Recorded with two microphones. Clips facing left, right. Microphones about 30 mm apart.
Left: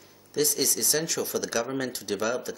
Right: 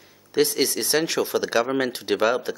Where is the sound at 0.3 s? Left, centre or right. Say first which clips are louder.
Right 5 dB; right.